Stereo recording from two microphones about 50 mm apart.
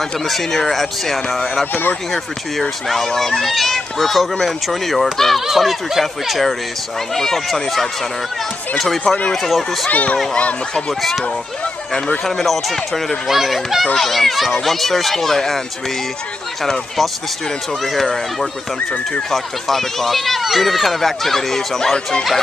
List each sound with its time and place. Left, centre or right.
0.3 s speech: centre
2.9 s speech: centre
9.8 s speech: left
10.3 s speech: centre
12.3 s speech: centre
16.6 s speech: centre